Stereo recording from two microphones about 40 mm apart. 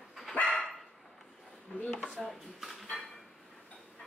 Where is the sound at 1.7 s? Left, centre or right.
Left.